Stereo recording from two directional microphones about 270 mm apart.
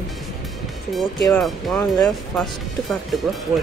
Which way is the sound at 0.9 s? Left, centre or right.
Centre.